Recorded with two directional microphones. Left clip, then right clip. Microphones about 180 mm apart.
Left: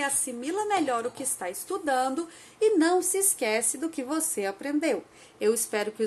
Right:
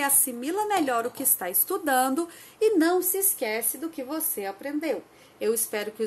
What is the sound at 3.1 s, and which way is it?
Speech, 5° left (ahead or behind).